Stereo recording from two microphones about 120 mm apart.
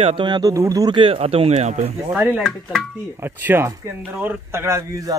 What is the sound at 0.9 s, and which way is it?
Speech, 50° right (ahead or behind).